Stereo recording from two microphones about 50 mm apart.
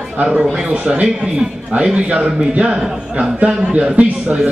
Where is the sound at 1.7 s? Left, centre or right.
Right.